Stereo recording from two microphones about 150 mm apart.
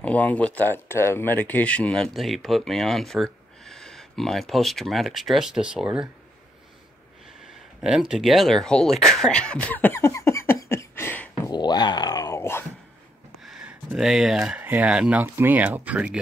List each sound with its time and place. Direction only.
0.0 s speech: 10° left (ahead or behind); by 6.0 s 5° right (ahead or behind)
7.8 s a sound: 5° right (ahead or behind); by 11.5 s 15° left (ahead or behind)
11.5 s groan: 30° left (ahead or behind)
13.4 s speech: 5° right (ahead or behind)